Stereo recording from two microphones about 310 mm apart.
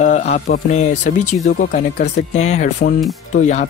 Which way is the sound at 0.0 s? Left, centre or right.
Left.